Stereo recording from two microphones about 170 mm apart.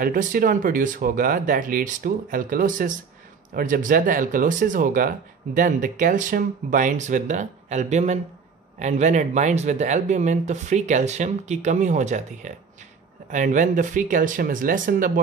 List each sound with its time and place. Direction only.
0.0 s speech: 55° right (ahead or behind)